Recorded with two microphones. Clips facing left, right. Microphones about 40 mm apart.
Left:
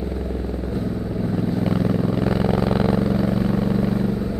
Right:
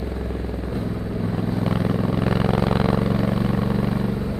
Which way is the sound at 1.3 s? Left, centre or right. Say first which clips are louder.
Left 2 dB; centre.